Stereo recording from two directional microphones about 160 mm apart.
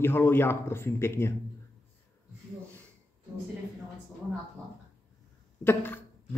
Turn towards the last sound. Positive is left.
turn(degrees=10)  # may be behind; listen again after turning